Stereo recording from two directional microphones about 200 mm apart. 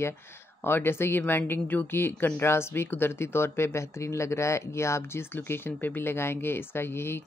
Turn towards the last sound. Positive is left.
turn(degrees=10)  # may be behind; listen again after turning